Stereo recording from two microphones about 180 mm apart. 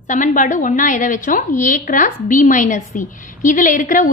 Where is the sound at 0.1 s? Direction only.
45° left (ahead or behind).